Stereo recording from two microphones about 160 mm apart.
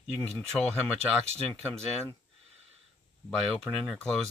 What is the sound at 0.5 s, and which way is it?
Speech, centre (ahead or behind).